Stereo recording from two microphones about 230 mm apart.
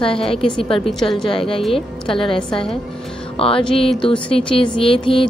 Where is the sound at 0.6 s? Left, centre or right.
Left.